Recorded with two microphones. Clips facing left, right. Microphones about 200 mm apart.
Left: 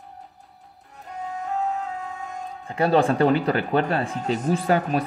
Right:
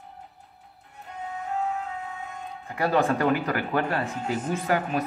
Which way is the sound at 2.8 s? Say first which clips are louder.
Left 4 dB; 30° left (ahead or behind).